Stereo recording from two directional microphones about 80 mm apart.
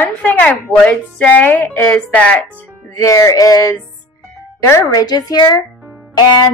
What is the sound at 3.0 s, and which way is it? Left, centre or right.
Speech, left.